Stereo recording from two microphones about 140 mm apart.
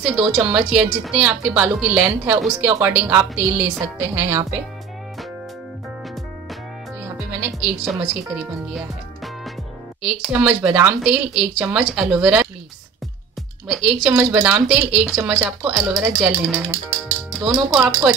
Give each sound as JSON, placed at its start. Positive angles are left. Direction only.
{"t": 0.0, "sound": "a woman's voice", "side_deg": -5}
{"t": 7.0, "sound": "a woman's voice", "side_deg": -15}
{"t": 13.7, "sound": "a woman's voice", "side_deg": -5}